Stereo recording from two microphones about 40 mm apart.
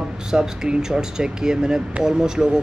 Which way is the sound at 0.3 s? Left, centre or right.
Centre.